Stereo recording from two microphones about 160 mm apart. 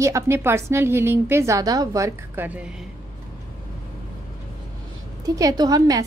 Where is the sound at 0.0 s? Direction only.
15° right (ahead or behind).